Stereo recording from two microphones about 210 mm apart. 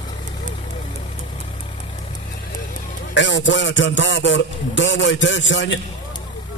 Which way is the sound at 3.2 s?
60° left (ahead or behind).